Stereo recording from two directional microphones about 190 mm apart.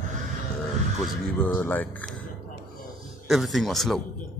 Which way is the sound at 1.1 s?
5° left (ahead or behind).